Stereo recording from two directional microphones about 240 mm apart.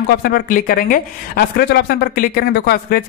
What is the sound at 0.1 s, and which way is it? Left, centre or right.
Speech, left.